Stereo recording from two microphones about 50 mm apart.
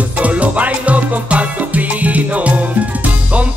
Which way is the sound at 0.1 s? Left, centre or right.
Right.